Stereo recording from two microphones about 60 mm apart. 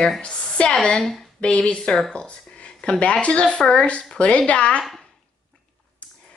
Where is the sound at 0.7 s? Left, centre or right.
Centre.